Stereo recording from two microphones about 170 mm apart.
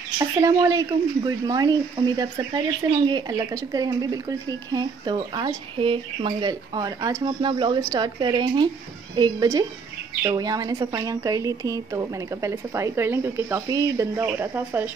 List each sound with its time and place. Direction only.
0.2 s a woman's voice: 20° right (ahead or behind)